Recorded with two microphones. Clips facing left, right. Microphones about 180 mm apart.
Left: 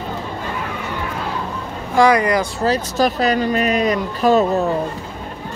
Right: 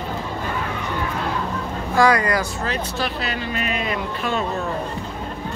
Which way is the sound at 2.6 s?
40° left (ahead or behind).